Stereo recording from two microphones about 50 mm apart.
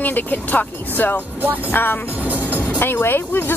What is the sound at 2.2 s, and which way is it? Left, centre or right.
Music, right.